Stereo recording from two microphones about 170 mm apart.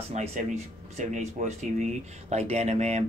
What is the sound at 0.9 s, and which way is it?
Speech, 45° right (ahead or behind).